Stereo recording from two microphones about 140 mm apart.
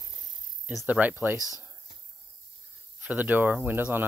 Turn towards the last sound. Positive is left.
turn(degrees=-15)  # may be behind; listen again after turning